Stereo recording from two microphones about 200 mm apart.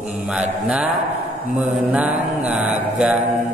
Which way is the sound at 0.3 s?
5° right (ahead or behind).